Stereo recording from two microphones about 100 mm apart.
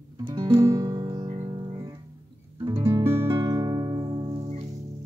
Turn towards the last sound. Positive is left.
turn(degrees=-70)  # may be behind; listen again after turning